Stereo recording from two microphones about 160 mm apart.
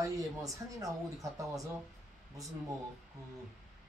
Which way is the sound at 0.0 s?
20° right (ahead or behind).